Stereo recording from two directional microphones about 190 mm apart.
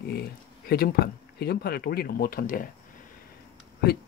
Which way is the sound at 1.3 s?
55° left (ahead or behind).